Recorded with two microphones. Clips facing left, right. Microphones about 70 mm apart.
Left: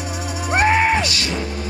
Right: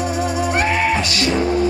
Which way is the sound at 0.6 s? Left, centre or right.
Left.